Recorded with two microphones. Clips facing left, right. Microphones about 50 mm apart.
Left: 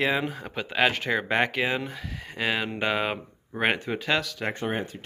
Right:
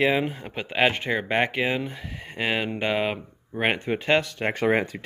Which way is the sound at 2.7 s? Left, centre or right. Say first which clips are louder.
Right 2 dB; centre.